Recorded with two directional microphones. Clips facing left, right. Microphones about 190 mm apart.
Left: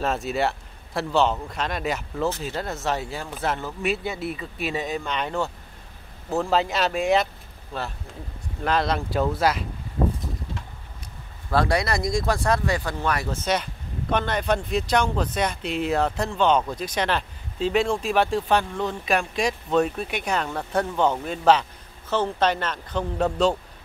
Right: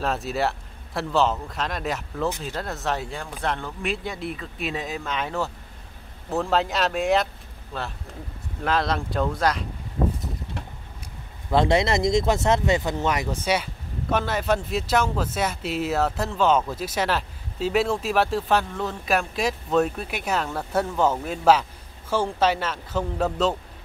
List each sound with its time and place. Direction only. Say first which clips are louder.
0.0 s speech: left 1 dB; centre (ahead or behind)
8.6 s speech: left 1 dB; centre (ahead or behind)
11.5 s speech: right 2 dB; 20° right (ahead or behind); by 23.5 s centre (ahead or behind)